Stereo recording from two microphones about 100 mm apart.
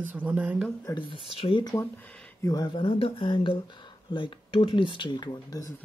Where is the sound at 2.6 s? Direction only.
60° left (ahead or behind); by 5.7 s 40° left (ahead or behind).